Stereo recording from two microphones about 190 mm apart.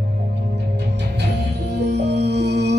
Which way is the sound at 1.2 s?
65° right (ahead or behind).